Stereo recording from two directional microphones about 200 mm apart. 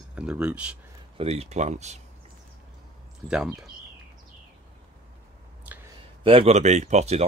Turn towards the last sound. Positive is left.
turn(degrees=-35)  # may be behind; listen again after turning